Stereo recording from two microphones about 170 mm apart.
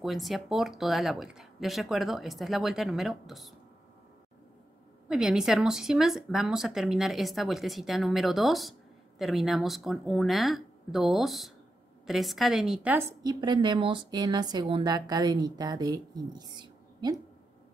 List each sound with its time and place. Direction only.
0.0 s speech: centre (ahead or behind)
5.0 s speech: 5° right (ahead or behind)
13.2 s a woman's voice: 25° right (ahead or behind)